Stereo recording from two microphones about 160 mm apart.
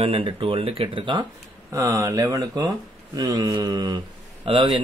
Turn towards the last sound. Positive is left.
turn(degrees=-30)  # may be behind; listen again after turning